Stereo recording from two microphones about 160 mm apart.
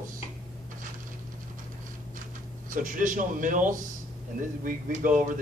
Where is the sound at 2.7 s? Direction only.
55° right (ahead or behind).